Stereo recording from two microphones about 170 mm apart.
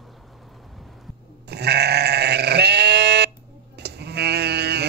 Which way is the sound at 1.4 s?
75° right (ahead or behind).